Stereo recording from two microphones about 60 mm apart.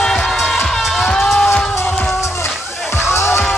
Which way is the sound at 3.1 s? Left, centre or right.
Left.